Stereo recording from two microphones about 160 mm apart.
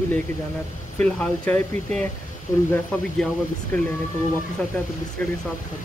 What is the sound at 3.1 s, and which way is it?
Speech, centre (ahead or behind).